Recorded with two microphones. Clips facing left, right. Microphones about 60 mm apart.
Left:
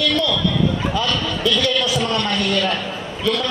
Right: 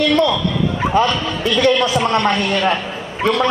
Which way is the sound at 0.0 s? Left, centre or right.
Right.